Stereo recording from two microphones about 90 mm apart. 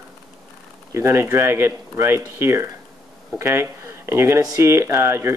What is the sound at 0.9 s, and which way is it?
Speech, 30° right (ahead or behind).